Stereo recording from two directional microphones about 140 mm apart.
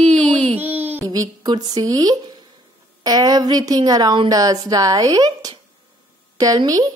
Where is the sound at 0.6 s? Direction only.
15° right (ahead or behind).